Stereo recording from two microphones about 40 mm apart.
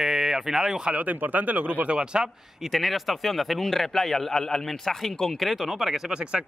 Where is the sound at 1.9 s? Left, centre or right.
Right.